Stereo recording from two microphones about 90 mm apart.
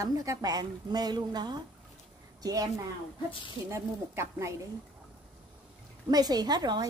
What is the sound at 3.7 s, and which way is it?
Speech, 30° right (ahead or behind).